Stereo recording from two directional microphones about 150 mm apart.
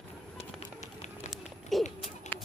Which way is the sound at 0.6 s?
50° left (ahead or behind).